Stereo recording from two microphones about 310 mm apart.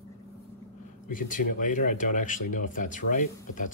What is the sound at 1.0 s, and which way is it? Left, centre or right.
Speech, left.